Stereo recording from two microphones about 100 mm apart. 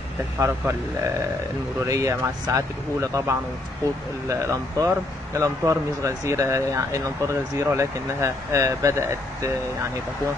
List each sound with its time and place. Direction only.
0.4 s speech: 25° right (ahead or behind)